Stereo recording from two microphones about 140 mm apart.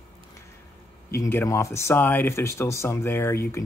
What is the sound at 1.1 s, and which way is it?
Speech, 20° left (ahead or behind).